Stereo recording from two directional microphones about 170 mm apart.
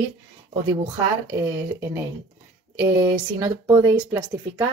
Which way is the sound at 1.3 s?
15° right (ahead or behind).